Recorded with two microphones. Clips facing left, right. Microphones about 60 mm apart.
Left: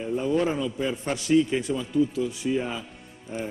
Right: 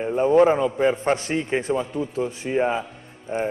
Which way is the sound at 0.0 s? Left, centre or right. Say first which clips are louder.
Right 8 dB; right.